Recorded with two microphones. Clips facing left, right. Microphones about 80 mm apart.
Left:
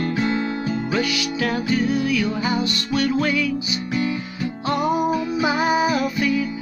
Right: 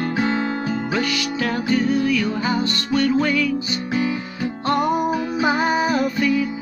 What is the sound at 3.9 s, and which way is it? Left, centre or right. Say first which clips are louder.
Guitar: right 1 dB; right.